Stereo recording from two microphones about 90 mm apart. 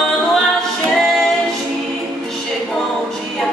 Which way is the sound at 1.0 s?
Centre (ahead or behind).